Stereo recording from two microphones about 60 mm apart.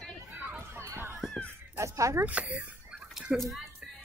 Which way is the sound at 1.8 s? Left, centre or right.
Right.